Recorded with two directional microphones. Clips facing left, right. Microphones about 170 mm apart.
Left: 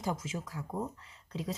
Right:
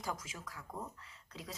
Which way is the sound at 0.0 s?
25° left (ahead or behind).